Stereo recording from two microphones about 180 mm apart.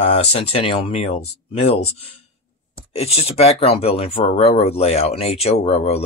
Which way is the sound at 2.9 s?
35° left (ahead or behind).